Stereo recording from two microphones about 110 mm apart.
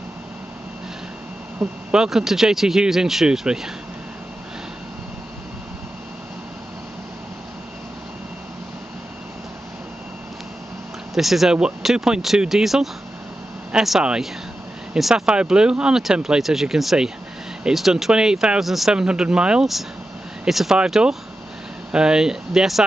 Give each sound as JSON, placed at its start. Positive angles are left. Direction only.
{"t": 1.6, "sound": "speech", "side_deg": -5}
{"t": 11.1, "sound": "speech", "side_deg": 0}